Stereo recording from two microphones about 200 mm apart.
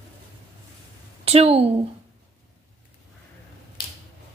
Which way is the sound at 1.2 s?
30° right (ahead or behind).